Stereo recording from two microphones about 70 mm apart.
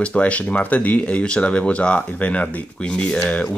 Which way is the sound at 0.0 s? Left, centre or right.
Centre.